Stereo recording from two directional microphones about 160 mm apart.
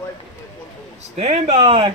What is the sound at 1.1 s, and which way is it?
Speech, 40° right (ahead or behind).